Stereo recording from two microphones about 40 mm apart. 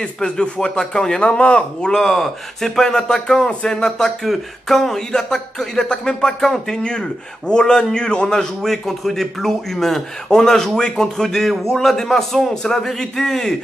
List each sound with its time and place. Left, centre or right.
0.0 s a man's voice: centre
2.0 s a man's voice: centre